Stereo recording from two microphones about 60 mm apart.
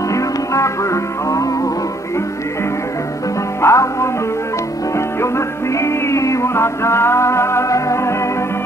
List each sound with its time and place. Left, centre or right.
0.1 s music: left
3.6 s music: left
5.8 s music: left